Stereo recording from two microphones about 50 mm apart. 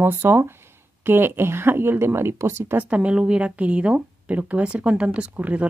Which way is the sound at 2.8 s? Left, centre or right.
Right.